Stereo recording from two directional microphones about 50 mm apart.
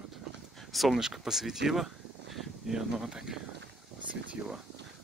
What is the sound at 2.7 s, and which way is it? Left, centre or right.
Speech, centre.